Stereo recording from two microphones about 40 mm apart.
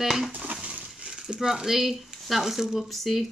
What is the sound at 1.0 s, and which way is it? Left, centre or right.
Speech, centre.